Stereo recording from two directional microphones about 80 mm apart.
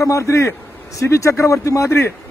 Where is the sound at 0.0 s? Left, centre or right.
Left.